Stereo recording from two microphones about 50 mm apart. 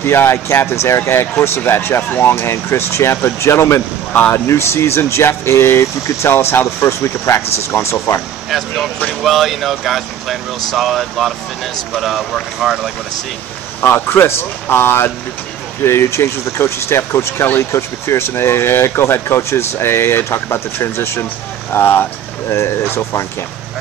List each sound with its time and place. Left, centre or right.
0.0 s speech: left
6.9 s speech: left
7.3 s speech: left
8.5 s speech: centre
13.7 s speech: left
22.5 s speech: left